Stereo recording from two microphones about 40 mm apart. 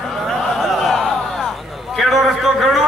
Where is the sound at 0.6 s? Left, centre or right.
Centre.